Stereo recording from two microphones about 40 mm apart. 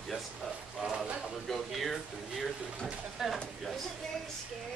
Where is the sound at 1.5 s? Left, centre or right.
Centre.